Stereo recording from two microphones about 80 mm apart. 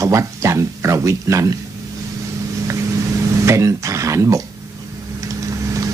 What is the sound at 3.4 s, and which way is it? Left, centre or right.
Speech, right.